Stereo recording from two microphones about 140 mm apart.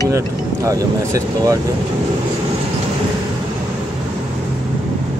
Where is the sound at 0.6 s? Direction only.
25° right (ahead or behind).